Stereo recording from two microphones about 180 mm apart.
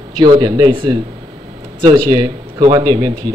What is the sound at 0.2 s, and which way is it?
A man's voice, 25° right (ahead or behind).